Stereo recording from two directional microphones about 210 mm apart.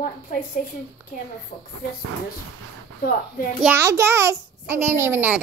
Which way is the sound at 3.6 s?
10° right (ahead or behind).